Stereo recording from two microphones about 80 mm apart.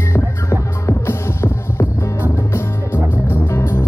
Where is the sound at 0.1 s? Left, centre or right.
Left.